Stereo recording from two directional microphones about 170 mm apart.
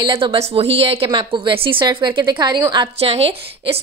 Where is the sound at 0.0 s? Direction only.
30° right (ahead or behind).